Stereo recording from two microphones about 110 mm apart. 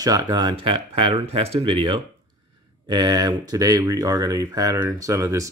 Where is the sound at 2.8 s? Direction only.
40° right (ahead or behind).